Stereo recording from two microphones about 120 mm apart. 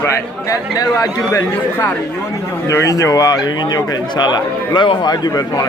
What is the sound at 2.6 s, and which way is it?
A man's voice, 25° left (ahead or behind).